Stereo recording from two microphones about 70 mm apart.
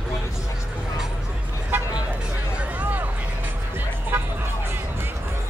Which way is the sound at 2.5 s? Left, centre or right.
Right.